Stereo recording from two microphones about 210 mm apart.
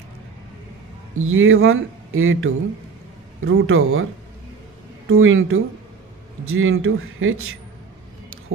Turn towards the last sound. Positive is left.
turn(degrees=-75)  # may be behind; listen again after turning